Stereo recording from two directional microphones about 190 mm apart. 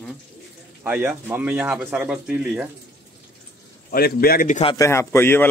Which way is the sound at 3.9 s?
50° left (ahead or behind).